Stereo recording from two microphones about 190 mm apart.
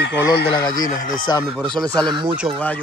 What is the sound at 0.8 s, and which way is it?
Speech, 45° left (ahead or behind).